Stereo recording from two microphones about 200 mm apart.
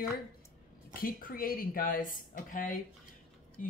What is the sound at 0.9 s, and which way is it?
A woman's voice, 45° left (ahead or behind).